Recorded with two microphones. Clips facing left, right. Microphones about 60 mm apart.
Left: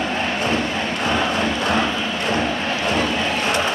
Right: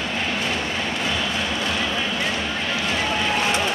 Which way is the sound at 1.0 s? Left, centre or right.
Left.